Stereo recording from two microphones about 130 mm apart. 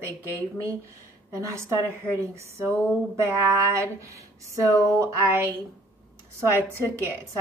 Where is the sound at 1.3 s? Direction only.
25° right (ahead or behind).